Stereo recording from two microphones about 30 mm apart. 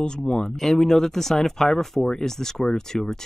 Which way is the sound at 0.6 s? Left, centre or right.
Centre.